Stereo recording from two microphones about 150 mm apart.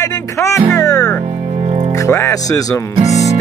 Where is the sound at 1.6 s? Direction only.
50° right (ahead or behind).